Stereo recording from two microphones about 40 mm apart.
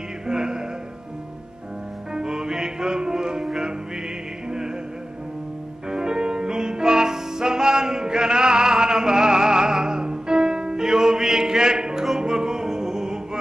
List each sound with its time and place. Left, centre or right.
0.3 s music: centre
2.1 s music: centre
5.9 s music: centre